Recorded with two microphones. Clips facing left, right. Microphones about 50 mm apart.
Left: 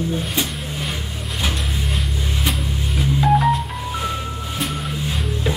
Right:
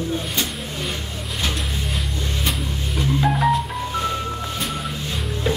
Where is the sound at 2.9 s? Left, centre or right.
Centre.